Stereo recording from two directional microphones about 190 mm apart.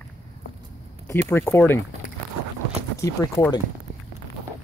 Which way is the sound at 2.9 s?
15° left (ahead or behind).